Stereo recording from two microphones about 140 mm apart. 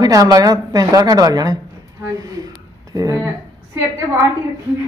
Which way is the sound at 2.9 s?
25° right (ahead or behind).